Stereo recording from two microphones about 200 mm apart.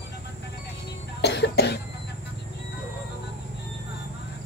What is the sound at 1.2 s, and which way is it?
Cough, 60° left (ahead or behind).